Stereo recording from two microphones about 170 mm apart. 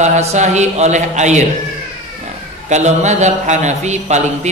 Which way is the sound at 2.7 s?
45° right (ahead or behind).